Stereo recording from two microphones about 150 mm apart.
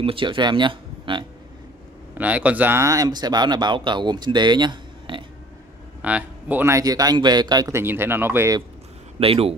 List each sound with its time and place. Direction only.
0.0 s speech: 35° right (ahead or behind)
2.1 s speech: 10° right (ahead or behind); by 5.2 s 30° right (ahead or behind)
6.0 s speech: 10° right (ahead or behind)
9.2 s speech: 40° right (ahead or behind)